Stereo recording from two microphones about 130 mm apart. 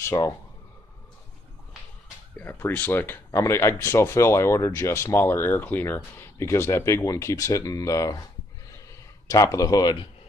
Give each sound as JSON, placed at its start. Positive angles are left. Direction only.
{"t": 0.0, "sound": "speech", "side_deg": 25}
{"t": 2.3, "sound": "speech", "side_deg": 15}
{"t": 8.7, "sound": "a sound", "side_deg": 25}